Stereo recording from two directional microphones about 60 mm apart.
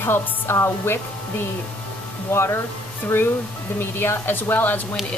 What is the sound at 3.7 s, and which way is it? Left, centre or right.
Speech, left.